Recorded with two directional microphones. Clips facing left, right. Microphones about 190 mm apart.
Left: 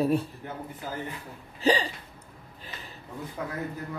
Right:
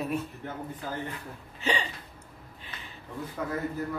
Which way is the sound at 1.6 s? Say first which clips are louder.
Left 6 dB; 35° left (ahead or behind).